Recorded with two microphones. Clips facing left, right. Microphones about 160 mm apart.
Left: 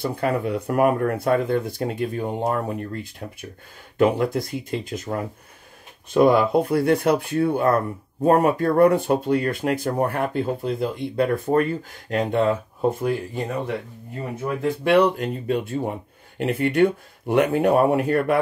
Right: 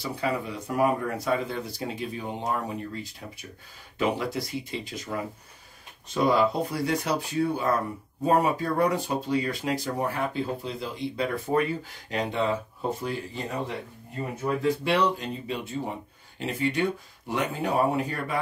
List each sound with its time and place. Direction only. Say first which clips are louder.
0.0 s speech: left 6 dB; 55° left (ahead or behind)
14.6 s speech: left 7 dB; 55° left (ahead or behind)